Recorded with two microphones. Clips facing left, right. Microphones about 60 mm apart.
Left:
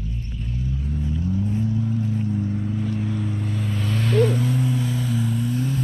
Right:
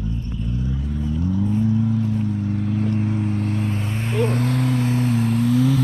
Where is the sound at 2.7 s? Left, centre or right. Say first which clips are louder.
Right 4 dB; right.